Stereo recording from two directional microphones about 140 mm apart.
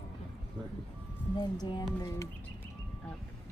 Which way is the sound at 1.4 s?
30° left (ahead or behind).